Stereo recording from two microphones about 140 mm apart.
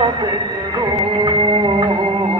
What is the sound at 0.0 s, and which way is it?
Music, 30° right (ahead or behind).